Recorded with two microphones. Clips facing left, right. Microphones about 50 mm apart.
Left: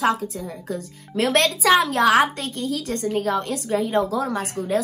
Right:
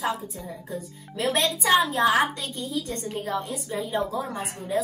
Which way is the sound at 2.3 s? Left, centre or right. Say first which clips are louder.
Left 4 dB; left.